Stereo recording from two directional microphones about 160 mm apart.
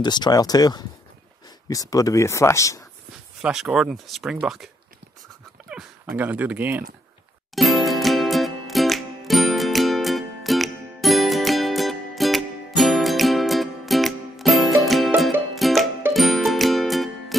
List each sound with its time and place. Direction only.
0.0 s speech: 25° left (ahead or behind)
3.4 s speech: 5° right (ahead or behind)
5.7 s speech: 5° right (ahead or behind)
7.5 s music: centre (ahead or behind)